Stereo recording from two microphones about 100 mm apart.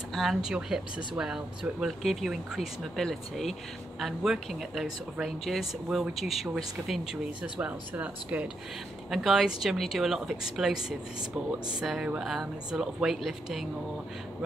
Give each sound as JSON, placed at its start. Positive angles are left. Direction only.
{"t": 0.1, "sound": "speech", "side_deg": 0}
{"t": 9.1, "sound": "speech", "side_deg": 0}